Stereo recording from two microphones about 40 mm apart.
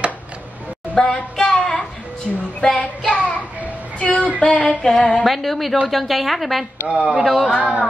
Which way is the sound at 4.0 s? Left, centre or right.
Left.